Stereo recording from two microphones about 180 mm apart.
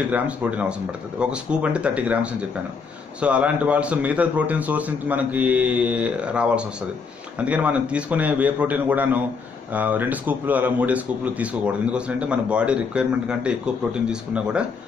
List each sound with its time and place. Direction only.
0.1 s speech: 5° right (ahead or behind)
3.2 s speech: 5° right (ahead or behind)